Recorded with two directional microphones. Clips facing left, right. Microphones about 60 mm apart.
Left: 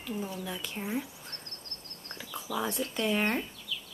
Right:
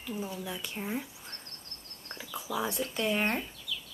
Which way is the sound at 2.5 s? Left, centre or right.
Centre.